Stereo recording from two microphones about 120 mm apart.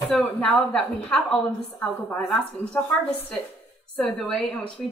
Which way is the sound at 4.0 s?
5° left (ahead or behind).